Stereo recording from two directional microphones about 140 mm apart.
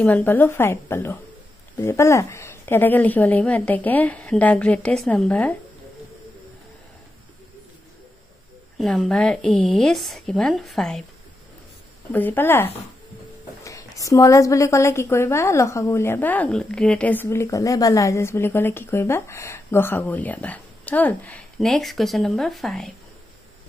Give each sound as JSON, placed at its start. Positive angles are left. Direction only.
{"t": 0.0, "sound": "a woman's voice", "side_deg": 10}
{"t": 8.7, "sound": "a woman's voice", "side_deg": 0}
{"t": 12.1, "sound": "a woman's voice", "side_deg": 15}